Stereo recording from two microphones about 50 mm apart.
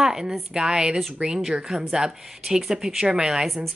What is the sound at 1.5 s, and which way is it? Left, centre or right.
Speech, centre.